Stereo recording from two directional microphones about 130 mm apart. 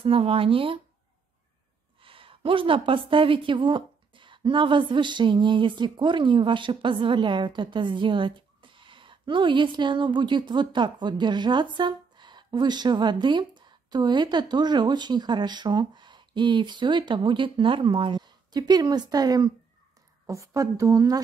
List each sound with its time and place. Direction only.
0.0 s speech: 45° right (ahead or behind)
2.0 s a woman's voice: 45° right (ahead or behind); by 21.2 s 25° right (ahead or behind)